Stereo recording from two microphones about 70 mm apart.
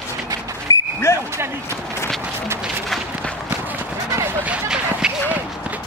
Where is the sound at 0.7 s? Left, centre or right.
Left.